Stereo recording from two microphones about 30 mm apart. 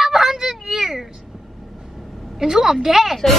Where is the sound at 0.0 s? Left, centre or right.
Centre.